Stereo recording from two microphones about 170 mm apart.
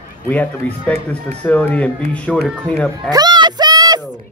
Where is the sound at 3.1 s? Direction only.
25° right (ahead or behind).